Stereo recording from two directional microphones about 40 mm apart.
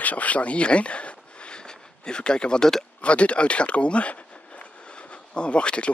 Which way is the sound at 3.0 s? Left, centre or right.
Left.